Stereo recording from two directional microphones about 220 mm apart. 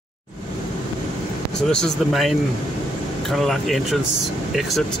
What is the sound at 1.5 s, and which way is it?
Speech, 5° left (ahead or behind).